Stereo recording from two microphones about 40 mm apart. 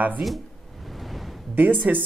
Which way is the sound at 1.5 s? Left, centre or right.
Right.